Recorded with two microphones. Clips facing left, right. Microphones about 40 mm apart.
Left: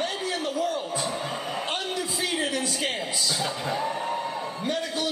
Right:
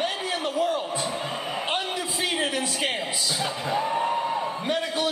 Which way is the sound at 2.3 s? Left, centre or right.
Centre.